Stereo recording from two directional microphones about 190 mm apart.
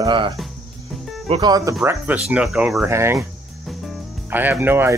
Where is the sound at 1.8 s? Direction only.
15° right (ahead or behind).